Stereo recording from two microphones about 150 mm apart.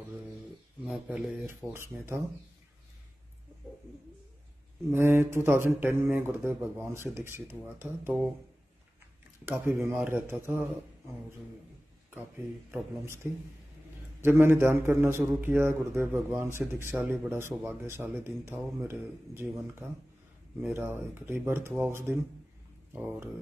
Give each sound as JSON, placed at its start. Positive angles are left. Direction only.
{"t": 0.8, "sound": "speech", "side_deg": -5}
{"t": 1.5, "sound": "speech", "side_deg": -15}
{"t": 4.9, "sound": "speech", "side_deg": -15}
{"t": 9.5, "sound": "speech", "side_deg": -15}
{"t": 12.7, "sound": "speech", "side_deg": -15}
{"t": 20.7, "sound": "speech", "side_deg": -15}